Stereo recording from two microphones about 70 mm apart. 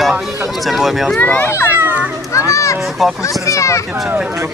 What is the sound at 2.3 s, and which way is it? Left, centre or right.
A child's voice, left.